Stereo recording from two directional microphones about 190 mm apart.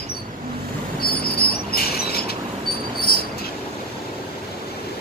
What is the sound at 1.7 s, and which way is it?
Rodents, 55° left (ahead or behind).